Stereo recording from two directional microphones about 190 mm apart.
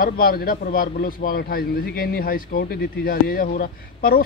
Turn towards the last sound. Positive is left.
turn(degrees=50)  # may be behind; listen again after turning